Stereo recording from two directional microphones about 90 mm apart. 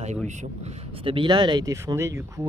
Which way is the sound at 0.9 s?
80° right.